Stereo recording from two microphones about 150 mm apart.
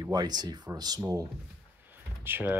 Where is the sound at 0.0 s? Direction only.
25° right (ahead or behind).